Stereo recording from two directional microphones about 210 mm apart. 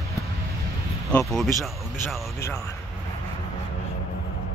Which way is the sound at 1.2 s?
Centre (ahead or behind).